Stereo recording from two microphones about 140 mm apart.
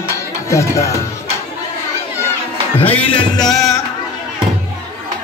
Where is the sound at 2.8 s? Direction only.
10° left (ahead or behind).